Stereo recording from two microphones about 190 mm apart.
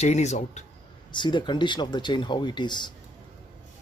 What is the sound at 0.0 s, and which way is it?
Speech, 35° left (ahead or behind).